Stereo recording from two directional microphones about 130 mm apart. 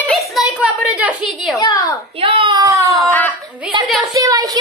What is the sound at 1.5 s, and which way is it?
Speech, 25° left (ahead or behind).